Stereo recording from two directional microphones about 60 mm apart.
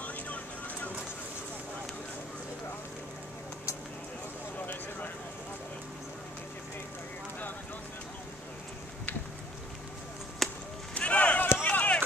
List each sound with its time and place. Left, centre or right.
0.0 s vehicle: left
10.4 s chop: centre
11.0 s run: left